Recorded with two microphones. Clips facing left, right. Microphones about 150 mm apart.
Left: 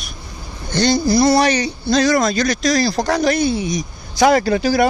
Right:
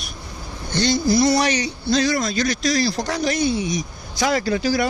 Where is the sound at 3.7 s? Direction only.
65° left (ahead or behind).